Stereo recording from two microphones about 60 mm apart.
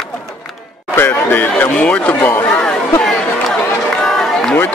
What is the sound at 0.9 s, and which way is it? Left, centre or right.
Speech, left.